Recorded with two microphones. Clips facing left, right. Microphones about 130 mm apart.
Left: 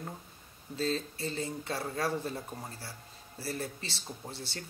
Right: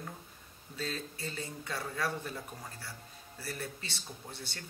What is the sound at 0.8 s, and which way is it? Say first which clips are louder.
Speech: left 6 dB; 30° left (ahead or behind).